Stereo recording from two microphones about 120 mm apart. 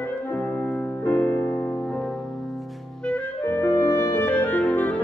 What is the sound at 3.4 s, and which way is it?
Clarinet, 15° left (ahead or behind).